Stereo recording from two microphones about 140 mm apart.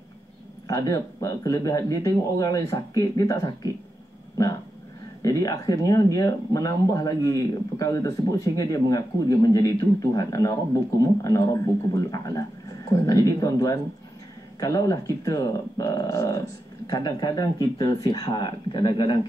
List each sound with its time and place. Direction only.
0.7 s speech: 25° left (ahead or behind)
5.2 s speech: 25° left (ahead or behind)